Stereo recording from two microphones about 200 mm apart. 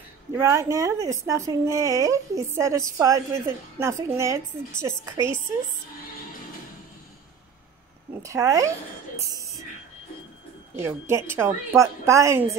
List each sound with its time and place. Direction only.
0.4 s a woman's voice: 15° right (ahead or behind)
8.2 s a woman's voice: 15° right (ahead or behind)
10.8 s a woman's voice: 15° right (ahead or behind)